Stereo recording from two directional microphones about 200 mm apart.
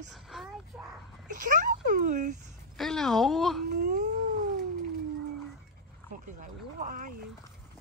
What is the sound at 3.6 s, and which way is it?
Speech, 40° right (ahead or behind).